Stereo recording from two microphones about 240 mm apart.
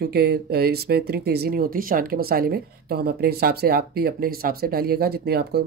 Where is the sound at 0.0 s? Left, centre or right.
Right.